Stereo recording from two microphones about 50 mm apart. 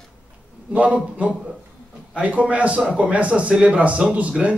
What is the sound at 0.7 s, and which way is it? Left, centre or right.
A man's voice, right.